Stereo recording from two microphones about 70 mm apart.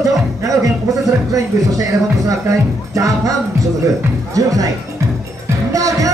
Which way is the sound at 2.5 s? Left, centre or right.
Right.